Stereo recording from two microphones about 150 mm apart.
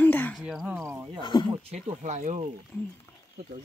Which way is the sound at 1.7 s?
45° right (ahead or behind).